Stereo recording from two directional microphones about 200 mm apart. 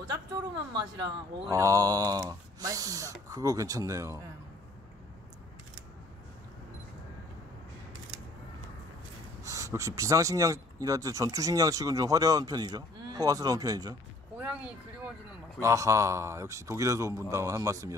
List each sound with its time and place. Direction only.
0.7 s speech: 20° right (ahead or behind)
9.4 s speech: 15° right (ahead or behind)
15.6 s speech: 15° right (ahead or behind)